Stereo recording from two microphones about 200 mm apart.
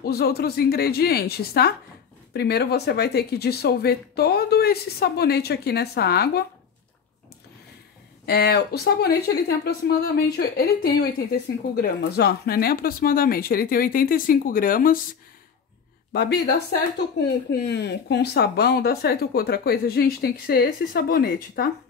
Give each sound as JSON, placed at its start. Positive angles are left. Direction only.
{"t": 0.0, "sound": "speech", "side_deg": 50}
{"t": 8.3, "sound": "speech", "side_deg": 55}
{"t": 16.1, "sound": "speech", "side_deg": 55}